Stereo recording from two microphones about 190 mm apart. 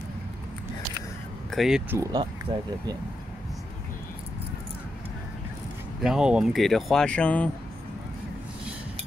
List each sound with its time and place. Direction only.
1.5 s speech: centre (ahead or behind)
2.5 s speech: 20° right (ahead or behind)
6.0 s speech: 5° right (ahead or behind)